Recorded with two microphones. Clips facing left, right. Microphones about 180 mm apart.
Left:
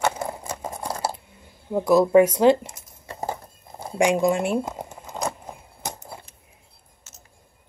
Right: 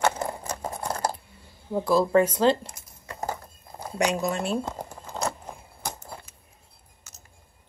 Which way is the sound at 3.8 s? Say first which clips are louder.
Left 6 dB; 25° left (ahead or behind).